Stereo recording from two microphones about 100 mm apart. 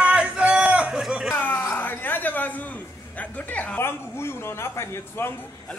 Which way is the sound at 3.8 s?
25° left (ahead or behind).